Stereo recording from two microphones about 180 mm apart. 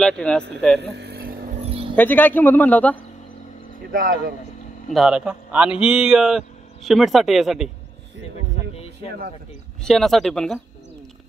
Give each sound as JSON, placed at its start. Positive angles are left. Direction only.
{"t": 0.0, "sound": "speech", "side_deg": 5}
{"t": 0.9, "sound": "vehicle", "side_deg": -60}
{"t": 1.6, "sound": "a sound", "side_deg": -35}
{"t": 2.0, "sound": "a man's voice", "side_deg": 10}
{"t": 3.9, "sound": "speech", "side_deg": -50}
{"t": 4.9, "sound": "speech", "side_deg": -5}
{"t": 9.8, "sound": "speech", "side_deg": 0}